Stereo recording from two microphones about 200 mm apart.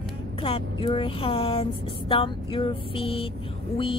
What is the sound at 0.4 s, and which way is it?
Speech, 25° left (ahead or behind).